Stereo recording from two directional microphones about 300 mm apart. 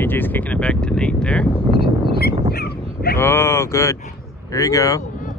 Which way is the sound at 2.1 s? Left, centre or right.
Left.